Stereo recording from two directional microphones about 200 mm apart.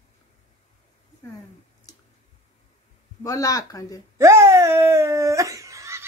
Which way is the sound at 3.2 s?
15° left (ahead or behind).